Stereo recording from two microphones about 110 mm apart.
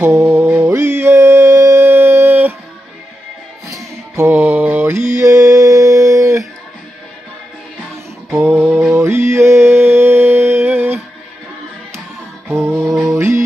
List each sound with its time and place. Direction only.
0.0 s music: 25° right (ahead or behind)
4.2 s mantra: 15° right (ahead or behind)
8.5 s mantra: 20° right (ahead or behind)
12.4 s music: 25° right (ahead or behind)
12.9 s music: centre (ahead or behind)